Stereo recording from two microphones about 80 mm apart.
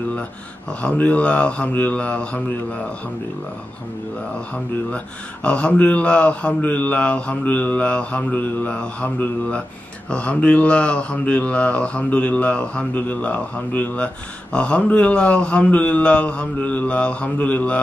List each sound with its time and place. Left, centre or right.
0.8 s speech: centre
4.9 s speech: centre